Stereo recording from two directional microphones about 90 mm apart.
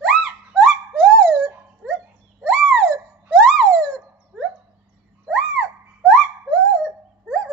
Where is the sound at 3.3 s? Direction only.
5° left (ahead or behind).